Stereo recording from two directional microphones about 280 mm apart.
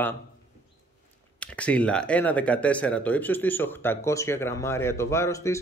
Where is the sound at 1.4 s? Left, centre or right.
Centre.